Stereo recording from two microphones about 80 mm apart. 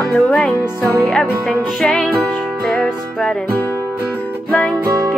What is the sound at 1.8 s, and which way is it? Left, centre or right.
Music, centre.